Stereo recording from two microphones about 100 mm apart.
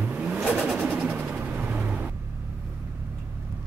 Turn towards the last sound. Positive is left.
turn(degrees=-15)  # may be behind; listen again after turning